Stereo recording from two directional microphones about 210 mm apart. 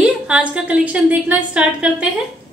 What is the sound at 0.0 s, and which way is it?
A woman's voice, 5° right (ahead or behind).